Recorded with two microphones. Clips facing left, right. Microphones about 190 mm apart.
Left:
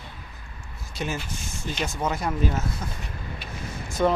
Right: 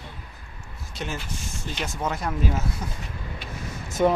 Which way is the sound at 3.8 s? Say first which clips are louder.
Right 2 dB; 20° right (ahead or behind).